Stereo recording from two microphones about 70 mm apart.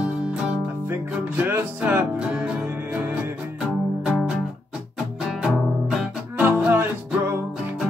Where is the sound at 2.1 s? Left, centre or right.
Centre.